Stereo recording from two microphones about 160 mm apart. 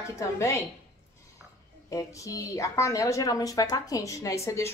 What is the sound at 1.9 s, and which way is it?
Speech, 20° left (ahead or behind).